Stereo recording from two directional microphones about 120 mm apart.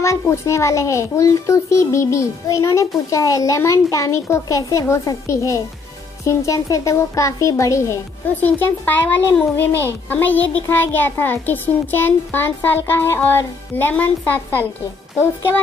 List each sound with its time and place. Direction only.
0.0 s a child's voice: 25° left (ahead or behind)